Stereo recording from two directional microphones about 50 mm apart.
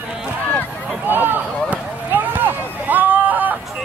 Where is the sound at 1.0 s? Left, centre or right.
Right.